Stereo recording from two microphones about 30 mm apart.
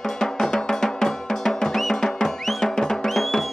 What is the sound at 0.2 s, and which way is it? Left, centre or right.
Music, centre.